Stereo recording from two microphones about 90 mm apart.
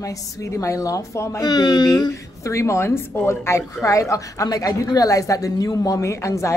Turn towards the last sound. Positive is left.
turn(degrees=35)  # may be behind; listen again after turning